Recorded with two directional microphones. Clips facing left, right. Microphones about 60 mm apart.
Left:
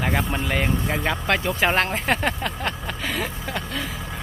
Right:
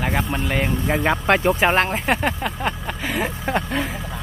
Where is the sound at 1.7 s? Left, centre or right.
Centre.